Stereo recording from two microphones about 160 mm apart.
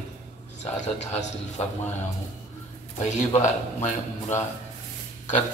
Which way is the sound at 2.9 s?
45° left (ahead or behind).